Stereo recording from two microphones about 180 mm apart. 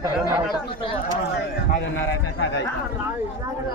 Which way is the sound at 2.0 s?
90° left.